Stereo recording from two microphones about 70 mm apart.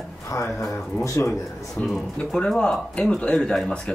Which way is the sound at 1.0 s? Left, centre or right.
Left.